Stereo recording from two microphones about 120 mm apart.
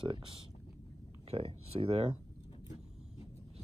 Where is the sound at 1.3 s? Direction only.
55° right (ahead or behind).